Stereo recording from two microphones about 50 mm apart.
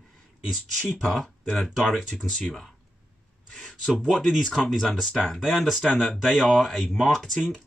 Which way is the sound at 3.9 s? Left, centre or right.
Centre.